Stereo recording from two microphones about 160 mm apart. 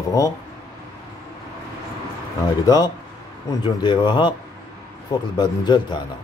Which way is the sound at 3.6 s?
25° left (ahead or behind).